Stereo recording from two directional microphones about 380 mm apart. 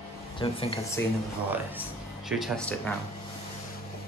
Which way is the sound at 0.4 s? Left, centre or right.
Centre.